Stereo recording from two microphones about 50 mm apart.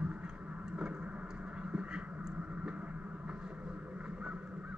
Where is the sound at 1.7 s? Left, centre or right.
Right.